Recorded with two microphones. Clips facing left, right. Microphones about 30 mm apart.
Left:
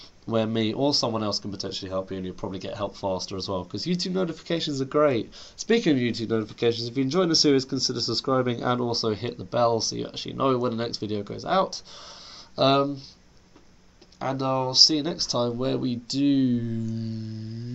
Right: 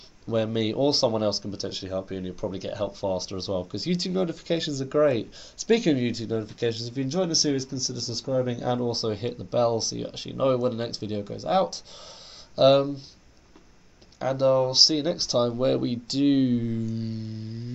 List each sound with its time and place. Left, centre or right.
0.3 s speech: centre
6.1 s speech: left
8.7 s speech: left
14.2 s speech: centre